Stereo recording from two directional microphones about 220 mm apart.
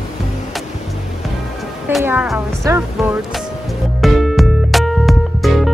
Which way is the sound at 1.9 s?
Centre (ahead or behind).